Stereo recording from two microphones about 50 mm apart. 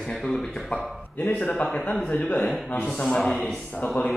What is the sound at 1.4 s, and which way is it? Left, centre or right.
A man's voice, left.